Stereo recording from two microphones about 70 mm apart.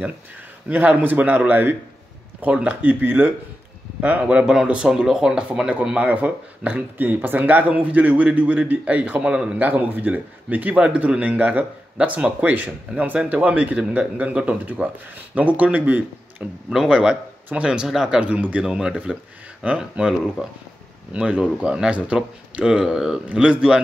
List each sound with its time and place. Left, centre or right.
0.7 s a man's voice: right
9.7 s a man's voice: right
16.7 s speech: centre
18.2 s speech: right